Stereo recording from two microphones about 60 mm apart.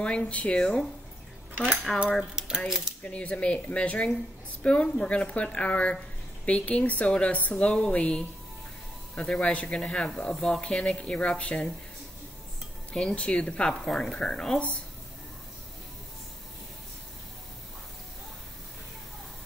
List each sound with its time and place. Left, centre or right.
0.0 s speech: left
1.9 s speech: centre
2.3 s speech: centre
3.0 s speech: centre
12.9 s speech: centre